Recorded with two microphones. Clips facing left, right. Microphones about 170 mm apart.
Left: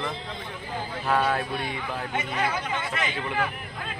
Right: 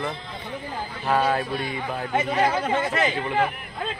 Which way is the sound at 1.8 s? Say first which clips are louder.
Right 5 dB; 40° right (ahead or behind).